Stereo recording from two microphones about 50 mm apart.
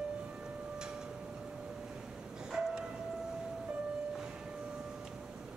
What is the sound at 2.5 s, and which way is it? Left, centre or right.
Train, centre.